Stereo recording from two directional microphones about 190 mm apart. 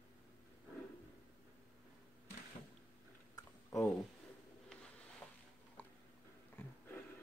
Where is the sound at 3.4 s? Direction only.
15° left (ahead or behind).